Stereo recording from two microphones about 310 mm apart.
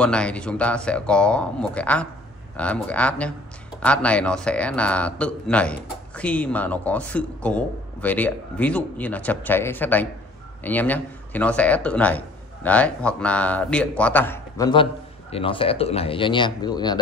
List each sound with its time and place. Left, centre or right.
0.0 s speech: centre